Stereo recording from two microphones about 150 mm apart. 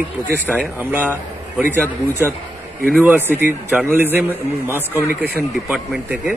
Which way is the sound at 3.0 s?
10° right (ahead or behind).